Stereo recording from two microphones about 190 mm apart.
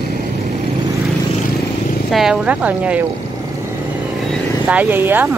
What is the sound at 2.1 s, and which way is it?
Speech, centre (ahead or behind).